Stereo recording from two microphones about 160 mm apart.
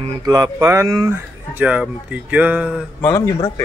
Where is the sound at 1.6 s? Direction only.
10° right (ahead or behind).